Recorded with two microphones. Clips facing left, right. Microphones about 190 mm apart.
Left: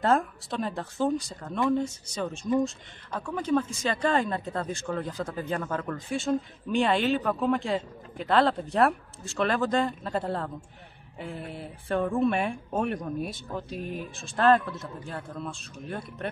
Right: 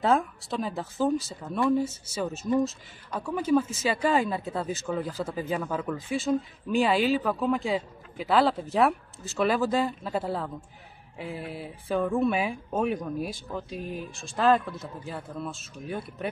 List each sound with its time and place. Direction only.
0.0 s speech: centre (ahead or behind)